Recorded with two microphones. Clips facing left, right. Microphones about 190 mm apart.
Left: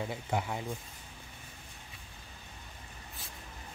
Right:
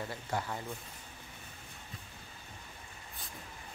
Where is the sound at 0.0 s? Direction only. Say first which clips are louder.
Left 3 dB; 15° left (ahead or behind).